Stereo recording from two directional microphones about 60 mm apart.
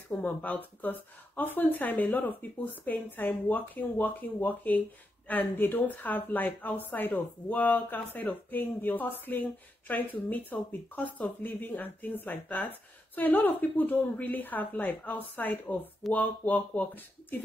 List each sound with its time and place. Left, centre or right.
0.2 s a woman's voice: left